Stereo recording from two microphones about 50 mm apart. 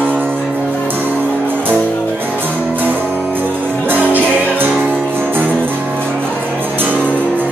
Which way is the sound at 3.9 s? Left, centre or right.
Right.